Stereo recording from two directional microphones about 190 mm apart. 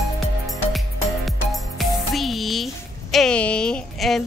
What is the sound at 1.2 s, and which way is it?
Music, centre (ahead or behind).